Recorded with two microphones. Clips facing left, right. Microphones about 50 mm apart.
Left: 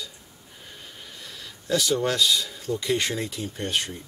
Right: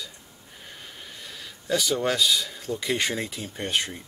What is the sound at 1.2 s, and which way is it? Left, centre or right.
Speech, centre.